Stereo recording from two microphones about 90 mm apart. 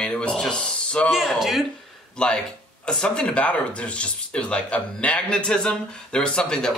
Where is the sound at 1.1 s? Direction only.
5° right (ahead or behind).